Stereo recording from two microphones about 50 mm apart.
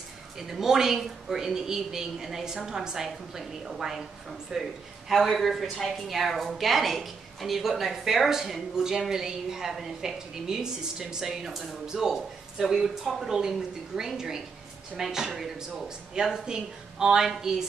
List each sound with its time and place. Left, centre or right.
0.4 s a woman's voice: centre
5.1 s a woman's voice: centre